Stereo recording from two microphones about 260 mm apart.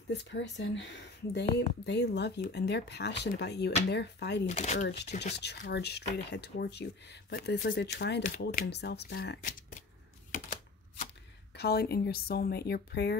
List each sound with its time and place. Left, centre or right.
0.1 s speech: left
4.5 s speech: left
4.8 s speech: left
11.5 s speech: left